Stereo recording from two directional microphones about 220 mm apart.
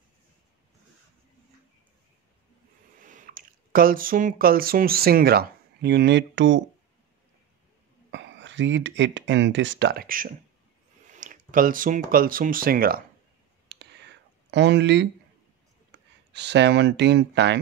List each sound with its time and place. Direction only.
3.0 s speech: 35° right (ahead or behind); by 6.6 s 55° right (ahead or behind)
8.1 s speech: 55° right (ahead or behind); by 10.3 s 40° right (ahead or behind)
11.1 s a sound: 35° right (ahead or behind)
12.1 s speech: 40° right (ahead or behind)
13.7 s whispering: 50° right (ahead or behind)
16.3 s speech: 50° right (ahead or behind)